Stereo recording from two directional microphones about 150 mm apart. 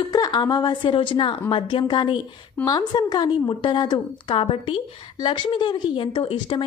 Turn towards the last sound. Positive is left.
turn(degrees=30)  # may be behind; listen again after turning